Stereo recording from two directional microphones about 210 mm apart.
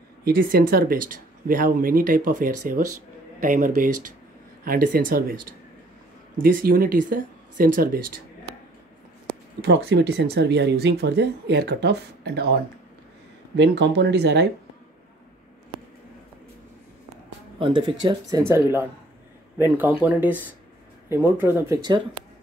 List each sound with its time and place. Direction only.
0.2 s a man's voice: 45° right (ahead or behind)
9.6 s speech: 50° right (ahead or behind)
13.6 s speech: 55° right (ahead or behind)
17.6 s speech: 25° right (ahead or behind)